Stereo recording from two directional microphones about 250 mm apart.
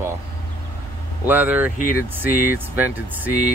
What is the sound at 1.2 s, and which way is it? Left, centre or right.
Speech, centre.